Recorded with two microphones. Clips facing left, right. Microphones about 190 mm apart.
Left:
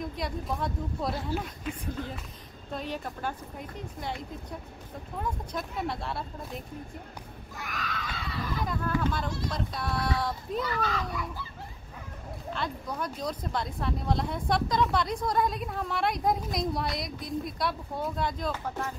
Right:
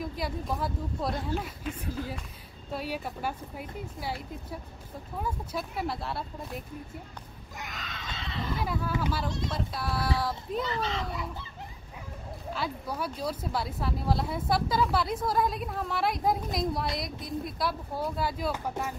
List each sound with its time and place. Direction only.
0.0 s speech: 5° right (ahead or behind)
7.5 s speech: 20° right (ahead or behind)
9.0 s speech: 5° right (ahead or behind)
10.6 s speech: 25° right (ahead or behind)
12.5 s speech: 5° right (ahead or behind)